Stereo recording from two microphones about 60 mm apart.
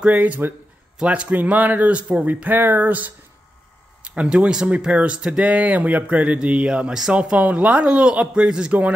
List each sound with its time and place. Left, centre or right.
0.0 s speech: right
0.9 s speech: centre
4.0 s speech: centre